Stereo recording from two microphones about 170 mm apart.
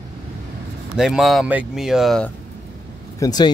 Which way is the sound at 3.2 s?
20° left (ahead or behind).